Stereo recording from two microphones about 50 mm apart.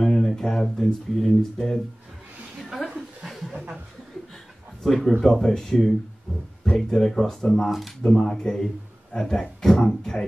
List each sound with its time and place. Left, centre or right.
0.0 s speech: centre
2.6 s a sound: centre
3.3 s chuckle: centre
4.8 s speech: centre